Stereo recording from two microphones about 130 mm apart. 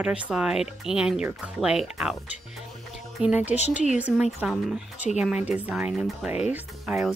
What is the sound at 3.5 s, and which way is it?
Speech, 5° right (ahead or behind).